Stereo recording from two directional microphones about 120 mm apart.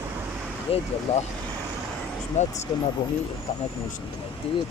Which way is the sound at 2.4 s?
75° left (ahead or behind).